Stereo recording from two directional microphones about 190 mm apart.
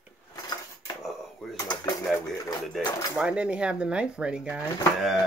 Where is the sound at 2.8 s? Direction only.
20° left (ahead or behind).